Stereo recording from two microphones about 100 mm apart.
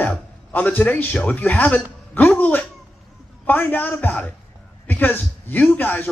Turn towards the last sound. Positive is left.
turn(degrees=20)  # may be behind; listen again after turning